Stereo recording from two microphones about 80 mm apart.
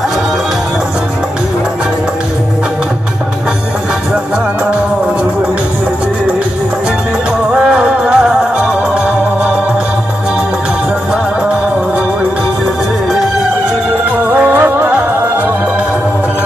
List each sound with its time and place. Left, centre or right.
7.5 s music: centre
14.3 s music: right